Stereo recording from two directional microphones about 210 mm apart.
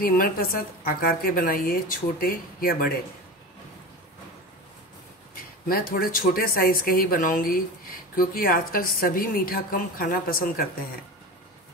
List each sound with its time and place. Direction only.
0.0 s speech: 45° left (ahead or behind)
5.3 s speech: 45° left (ahead or behind)